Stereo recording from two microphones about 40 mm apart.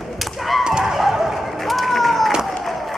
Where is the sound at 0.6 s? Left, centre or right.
Centre.